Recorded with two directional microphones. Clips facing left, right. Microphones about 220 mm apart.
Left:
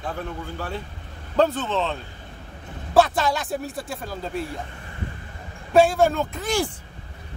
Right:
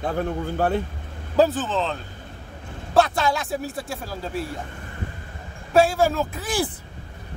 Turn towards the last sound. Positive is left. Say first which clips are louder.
# left 1 dB
turn(degrees=-5)  # may be behind; listen again after turning